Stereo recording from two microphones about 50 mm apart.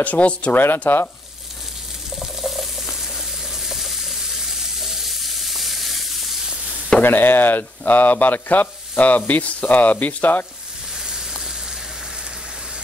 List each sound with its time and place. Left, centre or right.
0.0 s speech: left
0.5 s speech: left
2.1 s a sound: centre
3.4 s water: centre
7.0 s speech: left
11.0 s sizzle: centre